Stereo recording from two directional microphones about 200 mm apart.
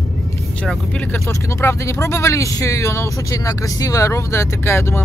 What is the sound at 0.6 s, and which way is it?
Speech, 5° left (ahead or behind).